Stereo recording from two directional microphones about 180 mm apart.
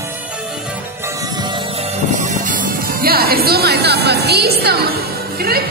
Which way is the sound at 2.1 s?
45° right (ahead or behind).